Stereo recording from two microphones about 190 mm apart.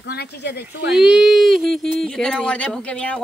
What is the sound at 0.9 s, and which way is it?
Speech, 5° right (ahead or behind).